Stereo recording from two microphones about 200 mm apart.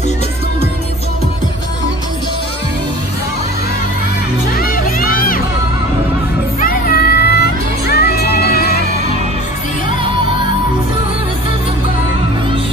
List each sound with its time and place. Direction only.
4.6 s music: 45° left (ahead or behind)
6.6 s music: 45° left (ahead or behind)
10.0 s music: 25° right (ahead or behind)